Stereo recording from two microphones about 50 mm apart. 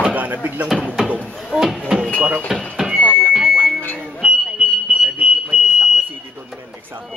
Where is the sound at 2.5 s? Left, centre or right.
Centre.